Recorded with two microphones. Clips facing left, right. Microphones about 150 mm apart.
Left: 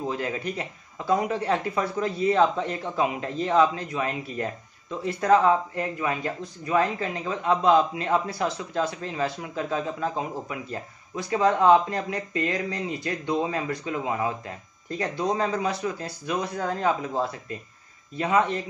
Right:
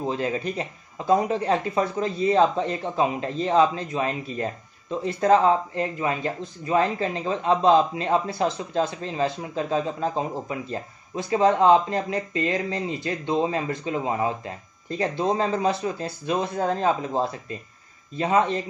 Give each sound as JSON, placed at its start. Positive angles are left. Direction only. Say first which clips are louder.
{"t": 0.0, "sound": "speech", "louder": "right 3 dB", "side_deg": -25}